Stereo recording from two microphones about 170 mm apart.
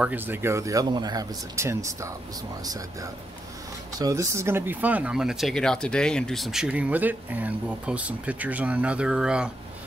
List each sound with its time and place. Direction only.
0.0 s speech: 10° right (ahead or behind)